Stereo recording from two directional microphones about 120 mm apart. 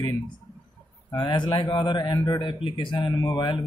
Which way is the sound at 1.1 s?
40° left (ahead or behind).